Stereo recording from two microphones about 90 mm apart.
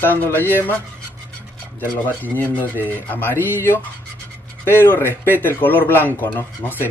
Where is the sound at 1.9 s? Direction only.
20° left (ahead or behind).